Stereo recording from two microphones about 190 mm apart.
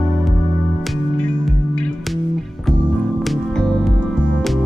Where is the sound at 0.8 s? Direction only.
5° left (ahead or behind).